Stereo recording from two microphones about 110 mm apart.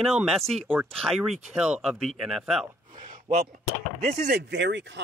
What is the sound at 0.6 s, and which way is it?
Speech, 15° right (ahead or behind).